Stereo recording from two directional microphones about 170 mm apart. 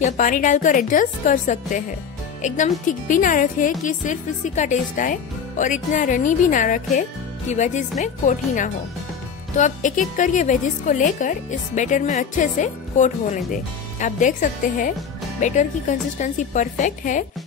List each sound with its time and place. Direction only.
0.0 s a woman's voice: 50° left (ahead or behind)